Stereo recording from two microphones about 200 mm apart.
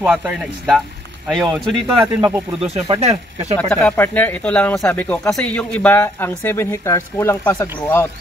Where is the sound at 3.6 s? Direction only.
5° left (ahead or behind).